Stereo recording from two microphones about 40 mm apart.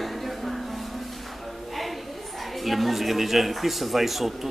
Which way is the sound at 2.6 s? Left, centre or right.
Centre.